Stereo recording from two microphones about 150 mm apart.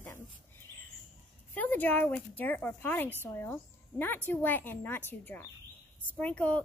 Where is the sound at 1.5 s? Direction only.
10° left (ahead or behind).